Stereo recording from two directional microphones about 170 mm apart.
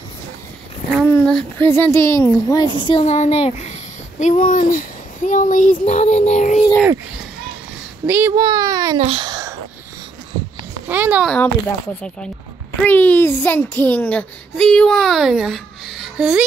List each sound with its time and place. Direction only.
1.0 s a sound: 10° left (ahead or behind)
1.7 s speech: 15° left (ahead or behind); by 6.6 s 45° left (ahead or behind)
8.1 s speech: 10° right (ahead or behind)
8.4 s a child's voice: 25° right (ahead or behind)
8.9 s speech: 35° right (ahead or behind)
9.3 s a sound: 20° right (ahead or behind)
10.9 s speech: 10° right (ahead or behind)
11.2 s speech: 10° left (ahead or behind)
12.8 s a child's voice: 10° left (ahead or behind); by 16.4 s 5° right (ahead or behind)